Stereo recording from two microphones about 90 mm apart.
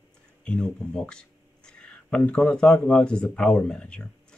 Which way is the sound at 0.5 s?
10° left (ahead or behind).